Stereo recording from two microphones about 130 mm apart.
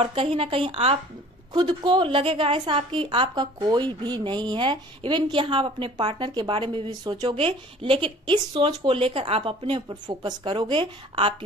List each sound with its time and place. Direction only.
0.0 s speech: 45° right (ahead or behind)
1.5 s a woman's voice: 35° right (ahead or behind)
7.3 s a woman's voice: 45° right (ahead or behind)